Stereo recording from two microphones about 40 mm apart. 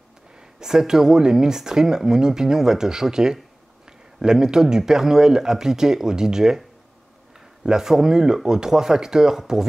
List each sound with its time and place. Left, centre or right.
0.6 s speech: centre
7.6 s speech: centre